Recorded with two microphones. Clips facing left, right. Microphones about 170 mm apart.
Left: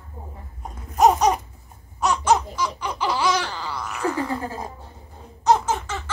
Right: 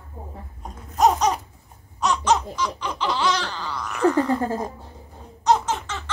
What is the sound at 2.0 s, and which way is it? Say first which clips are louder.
Laughter: left 1 dB; centre (ahead or behind).